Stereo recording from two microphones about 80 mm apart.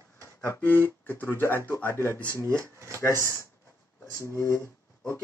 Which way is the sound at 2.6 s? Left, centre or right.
Right.